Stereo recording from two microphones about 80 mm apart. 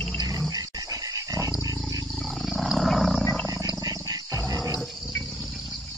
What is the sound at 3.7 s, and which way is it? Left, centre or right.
Wild animals, right.